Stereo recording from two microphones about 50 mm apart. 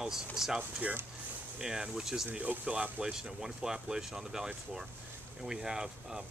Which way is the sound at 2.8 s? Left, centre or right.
Right.